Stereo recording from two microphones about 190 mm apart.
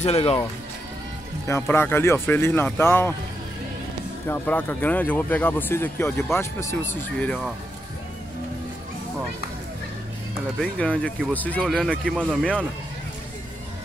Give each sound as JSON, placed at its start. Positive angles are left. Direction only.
{"t": 0.0, "sound": "speech", "side_deg": 30}
{"t": 1.5, "sound": "speech", "side_deg": 10}
{"t": 4.3, "sound": "speech", "side_deg": 10}
{"t": 10.6, "sound": "speech", "side_deg": 5}